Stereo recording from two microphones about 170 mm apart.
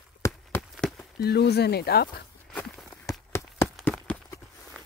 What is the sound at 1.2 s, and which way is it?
Speech, 70° left (ahead or behind).